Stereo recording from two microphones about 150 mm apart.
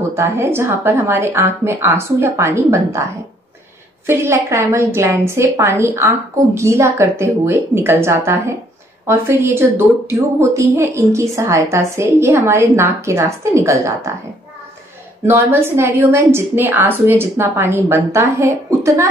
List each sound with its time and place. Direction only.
0.1 s a woman's voice: 15° right (ahead or behind)
4.0 s a woman's voice: 15° right (ahead or behind)
15.2 s a woman's voice: 15° right (ahead or behind)